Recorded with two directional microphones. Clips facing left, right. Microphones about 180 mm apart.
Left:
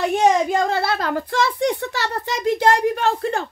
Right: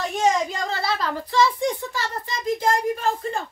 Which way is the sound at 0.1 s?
60° left (ahead or behind).